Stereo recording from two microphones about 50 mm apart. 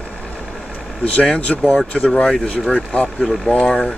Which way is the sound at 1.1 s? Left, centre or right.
Left.